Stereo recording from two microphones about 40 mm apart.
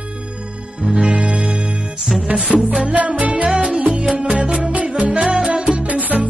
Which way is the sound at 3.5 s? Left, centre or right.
Right.